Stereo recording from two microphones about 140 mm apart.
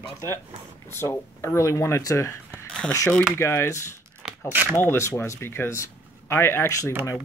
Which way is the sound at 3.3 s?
20° left (ahead or behind).